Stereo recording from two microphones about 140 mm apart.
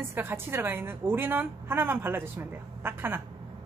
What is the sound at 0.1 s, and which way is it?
Speech, 15° right (ahead or behind).